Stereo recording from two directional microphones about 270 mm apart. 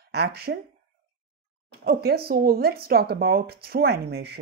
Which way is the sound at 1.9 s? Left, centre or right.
Right.